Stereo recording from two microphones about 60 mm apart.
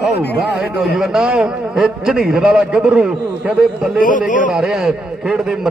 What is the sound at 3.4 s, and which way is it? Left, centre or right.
Speech, right.